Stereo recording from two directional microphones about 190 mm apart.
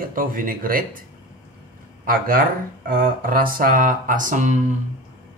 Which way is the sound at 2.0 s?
50° right (ahead or behind).